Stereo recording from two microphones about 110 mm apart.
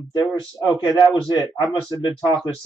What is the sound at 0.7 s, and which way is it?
Speech, 40° left (ahead or behind).